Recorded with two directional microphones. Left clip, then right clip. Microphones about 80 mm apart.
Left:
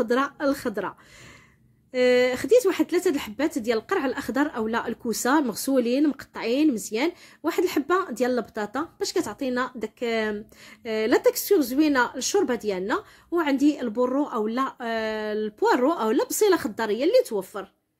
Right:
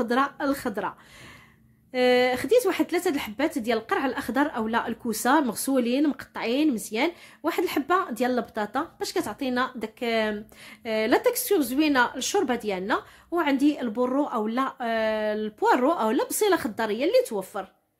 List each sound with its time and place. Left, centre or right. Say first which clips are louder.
0.0 s speech: left 1 dB; left